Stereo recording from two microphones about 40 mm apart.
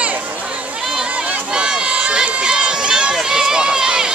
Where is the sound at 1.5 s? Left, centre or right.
Right.